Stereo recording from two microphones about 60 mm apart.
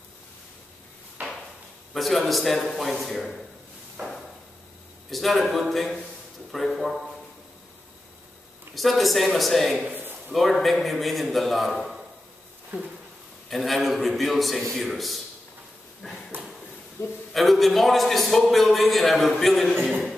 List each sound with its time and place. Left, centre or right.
2.0 s a man's voice: centre
4.0 s a sound: right
5.1 s a man's voice: centre
8.7 s a man's voice: centre
13.5 s a man's voice: centre
17.3 s a man's voice: centre